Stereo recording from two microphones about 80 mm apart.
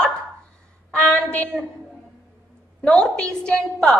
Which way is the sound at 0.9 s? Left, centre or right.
Centre.